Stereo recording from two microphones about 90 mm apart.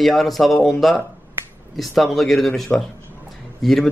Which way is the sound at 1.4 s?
25° right (ahead or behind).